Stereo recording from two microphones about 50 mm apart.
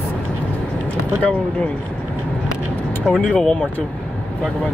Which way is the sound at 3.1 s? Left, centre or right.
Centre.